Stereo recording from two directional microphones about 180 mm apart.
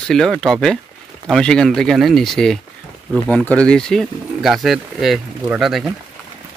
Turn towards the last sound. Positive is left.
turn(degrees=-5)  # may be behind; listen again after turning